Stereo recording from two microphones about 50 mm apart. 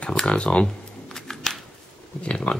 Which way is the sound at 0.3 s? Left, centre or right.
Left.